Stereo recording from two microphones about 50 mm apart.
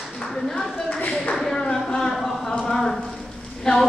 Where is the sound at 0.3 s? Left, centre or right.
Centre.